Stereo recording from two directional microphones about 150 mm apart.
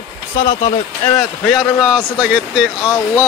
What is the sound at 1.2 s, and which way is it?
Speech, centre (ahead or behind).